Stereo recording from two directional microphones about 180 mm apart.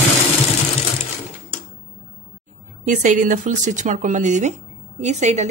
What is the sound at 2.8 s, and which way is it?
Speech, 45° right (ahead or behind).